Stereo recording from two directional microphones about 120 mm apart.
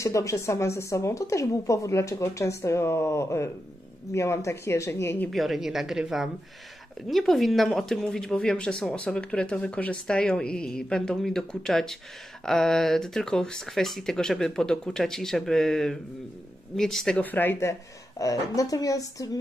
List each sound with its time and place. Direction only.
0.0 s speech: 25° left (ahead or behind)
5.3 s speech: centre (ahead or behind); by 19.3 s 30° left (ahead or behind)